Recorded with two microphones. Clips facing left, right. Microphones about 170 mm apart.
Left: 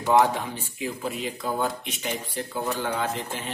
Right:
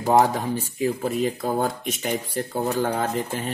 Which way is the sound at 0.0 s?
40° right (ahead or behind).